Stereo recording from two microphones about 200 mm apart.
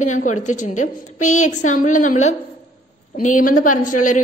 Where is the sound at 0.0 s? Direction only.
40° left (ahead or behind).